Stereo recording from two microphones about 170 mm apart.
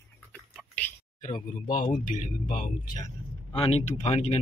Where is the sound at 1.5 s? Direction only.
50° left (ahead or behind).